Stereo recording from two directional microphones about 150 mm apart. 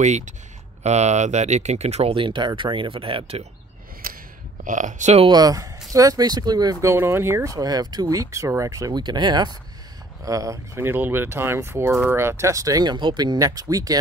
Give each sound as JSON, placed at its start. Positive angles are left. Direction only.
{"t": 0.0, "sound": "speech", "side_deg": -50}
{"t": 4.0, "sound": "a sound", "side_deg": -70}
{"t": 4.6, "sound": "speech", "side_deg": -60}
{"t": 5.2, "sound": "speech", "side_deg": -25}